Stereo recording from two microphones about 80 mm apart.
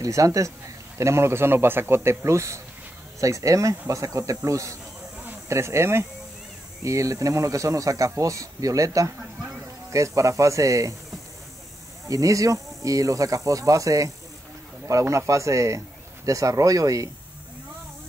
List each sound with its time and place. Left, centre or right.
0.0 s speech: right
12.1 s speech: right